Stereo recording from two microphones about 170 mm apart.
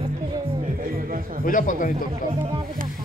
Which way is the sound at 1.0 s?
55° right (ahead or behind).